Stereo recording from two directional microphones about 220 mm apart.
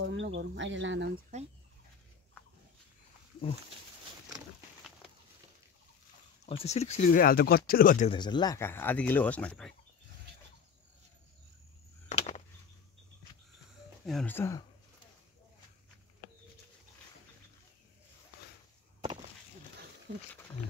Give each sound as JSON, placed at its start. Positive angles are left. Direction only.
{"t": 0.0, "sound": "speech", "side_deg": -55}
{"t": 6.4, "sound": "speech", "side_deg": 30}
{"t": 8.1, "sound": "speech", "side_deg": 20}
{"t": 12.1, "sound": "a sound", "side_deg": 30}
{"t": 14.0, "sound": "speech", "side_deg": 5}